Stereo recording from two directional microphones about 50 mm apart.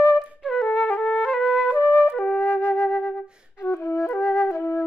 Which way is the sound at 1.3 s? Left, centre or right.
Right.